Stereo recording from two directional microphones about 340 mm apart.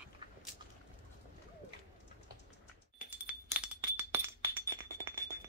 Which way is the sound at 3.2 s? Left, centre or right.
Centre.